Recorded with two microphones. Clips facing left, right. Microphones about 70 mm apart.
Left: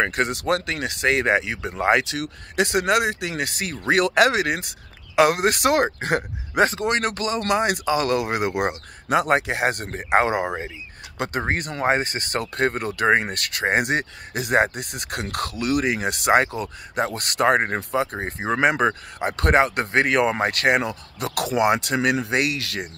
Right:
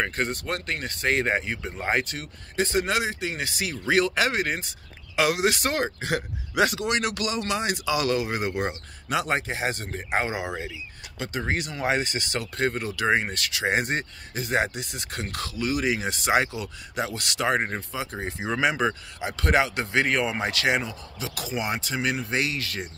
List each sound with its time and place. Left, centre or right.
0.0 s speech: left
6.6 s speech: left
7.4 s speech: left
13.8 s speech: left
18.1 s speech: left